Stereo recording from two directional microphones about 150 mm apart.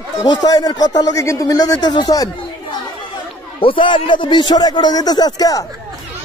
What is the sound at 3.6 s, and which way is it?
A man's voice, 35° left (ahead or behind).